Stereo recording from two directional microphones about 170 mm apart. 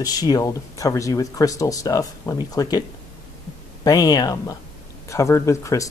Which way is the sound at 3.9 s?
20° left (ahead or behind).